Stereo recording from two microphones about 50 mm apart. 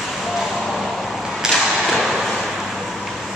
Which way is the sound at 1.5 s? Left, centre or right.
Centre.